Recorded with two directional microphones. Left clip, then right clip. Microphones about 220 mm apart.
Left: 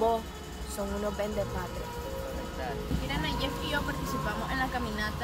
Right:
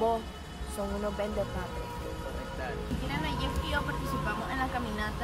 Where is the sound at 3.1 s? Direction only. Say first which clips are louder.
Left 1 dB; 5° left (ahead or behind).